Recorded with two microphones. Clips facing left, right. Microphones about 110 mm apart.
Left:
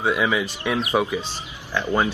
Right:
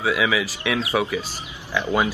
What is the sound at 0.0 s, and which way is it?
Speech, centre (ahead or behind).